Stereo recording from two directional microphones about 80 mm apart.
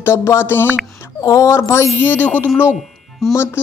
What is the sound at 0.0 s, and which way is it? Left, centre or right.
Speech, left.